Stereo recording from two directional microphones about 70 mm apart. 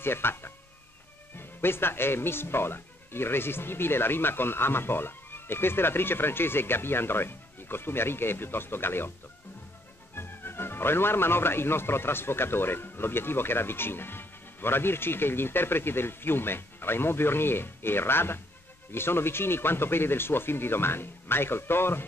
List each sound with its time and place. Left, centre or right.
0.0 s speech: left
10.1 s speech: left